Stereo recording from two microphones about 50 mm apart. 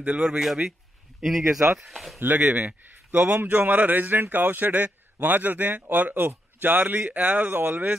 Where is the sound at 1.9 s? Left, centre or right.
Centre.